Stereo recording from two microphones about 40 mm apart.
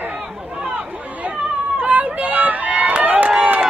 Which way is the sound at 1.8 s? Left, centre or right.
Right.